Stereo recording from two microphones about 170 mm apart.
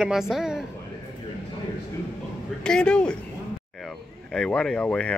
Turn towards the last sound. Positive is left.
turn(degrees=5)  # may be behind; listen again after turning